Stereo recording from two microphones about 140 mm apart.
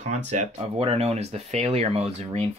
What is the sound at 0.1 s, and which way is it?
Speech, 55° right (ahead or behind).